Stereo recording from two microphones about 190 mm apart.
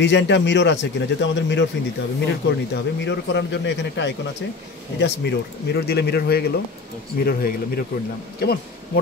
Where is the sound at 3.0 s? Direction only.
65° left (ahead or behind).